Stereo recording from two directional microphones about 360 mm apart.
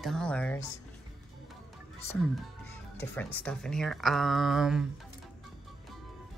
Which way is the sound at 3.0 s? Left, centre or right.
Centre.